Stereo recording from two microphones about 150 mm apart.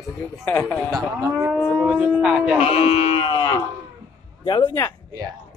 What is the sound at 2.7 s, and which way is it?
Sheep, 40° left (ahead or behind).